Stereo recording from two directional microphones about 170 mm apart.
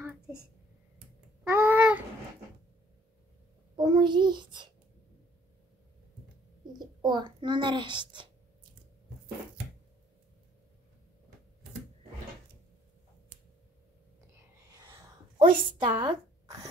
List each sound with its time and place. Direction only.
1.5 s babbling: 10° right (ahead or behind)
3.7 s child singing: 25° right (ahead or behind)
6.8 s a child's voice: 25° right (ahead or behind)
14.7 s a sound: 20° right (ahead or behind)